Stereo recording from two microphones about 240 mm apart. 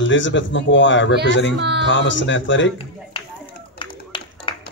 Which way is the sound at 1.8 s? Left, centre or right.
Left.